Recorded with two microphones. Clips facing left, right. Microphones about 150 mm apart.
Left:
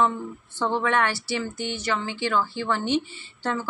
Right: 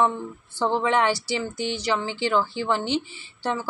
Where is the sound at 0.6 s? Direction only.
15° right (ahead or behind).